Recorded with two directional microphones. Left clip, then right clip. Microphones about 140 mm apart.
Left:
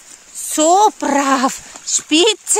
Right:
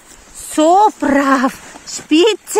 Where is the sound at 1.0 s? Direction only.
40° left (ahead or behind).